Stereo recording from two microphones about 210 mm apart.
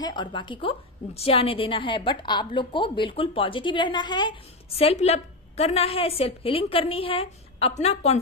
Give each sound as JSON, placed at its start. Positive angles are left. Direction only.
{"t": 0.0, "sound": "a woman's voice", "side_deg": 20}